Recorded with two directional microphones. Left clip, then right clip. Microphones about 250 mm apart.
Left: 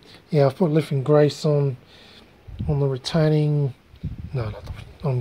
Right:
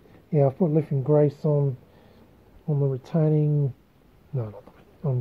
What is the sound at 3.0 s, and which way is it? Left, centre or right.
Speech, centre.